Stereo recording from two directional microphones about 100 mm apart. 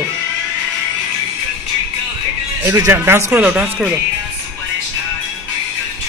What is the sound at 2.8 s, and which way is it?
Speech, 25° right (ahead or behind).